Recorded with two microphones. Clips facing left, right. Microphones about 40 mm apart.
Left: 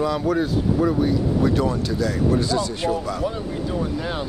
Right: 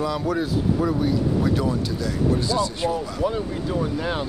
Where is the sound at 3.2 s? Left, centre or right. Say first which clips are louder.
Right 1 dB; centre.